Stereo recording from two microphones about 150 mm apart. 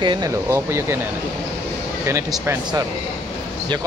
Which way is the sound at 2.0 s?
20° right (ahead or behind).